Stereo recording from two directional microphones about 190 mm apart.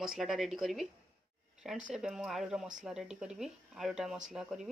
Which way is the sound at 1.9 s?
5° right (ahead or behind).